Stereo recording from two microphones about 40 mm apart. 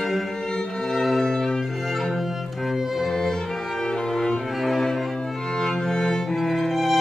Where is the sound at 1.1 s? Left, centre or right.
Centre.